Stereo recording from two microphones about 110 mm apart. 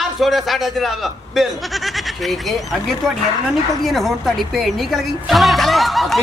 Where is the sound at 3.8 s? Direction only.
Centre (ahead or behind).